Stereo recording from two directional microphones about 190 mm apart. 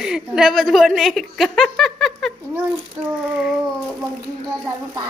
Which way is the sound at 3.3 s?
5° right (ahead or behind).